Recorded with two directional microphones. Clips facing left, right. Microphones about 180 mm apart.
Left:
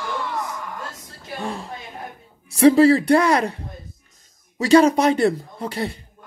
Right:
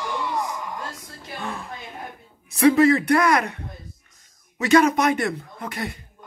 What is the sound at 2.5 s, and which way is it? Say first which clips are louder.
A man's voice: left 3 dB; 35° left (ahead or behind).